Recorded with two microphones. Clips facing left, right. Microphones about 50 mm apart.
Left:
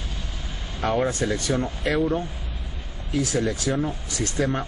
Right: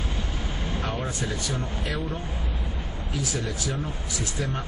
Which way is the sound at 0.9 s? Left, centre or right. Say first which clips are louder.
Left 7 dB; left.